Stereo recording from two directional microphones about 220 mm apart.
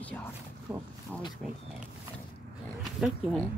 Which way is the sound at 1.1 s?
5° left (ahead or behind).